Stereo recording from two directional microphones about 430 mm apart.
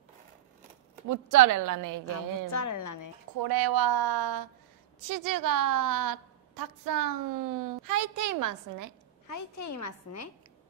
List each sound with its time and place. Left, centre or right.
1.0 s a woman's voice: right
2.5 s a woman's voice: left
3.3 s a woman's voice: right
9.3 s a woman's voice: left